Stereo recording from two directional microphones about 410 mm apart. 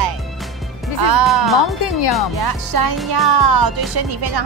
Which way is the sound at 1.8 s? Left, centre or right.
Left.